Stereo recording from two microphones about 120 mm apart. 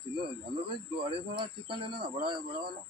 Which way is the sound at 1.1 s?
45° right (ahead or behind).